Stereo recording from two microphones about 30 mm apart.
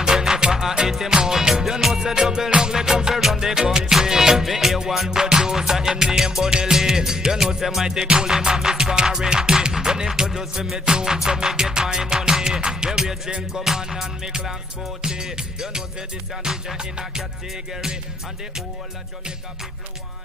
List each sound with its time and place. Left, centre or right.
0.0 s music: right
5.2 s music: right
15.0 s music: right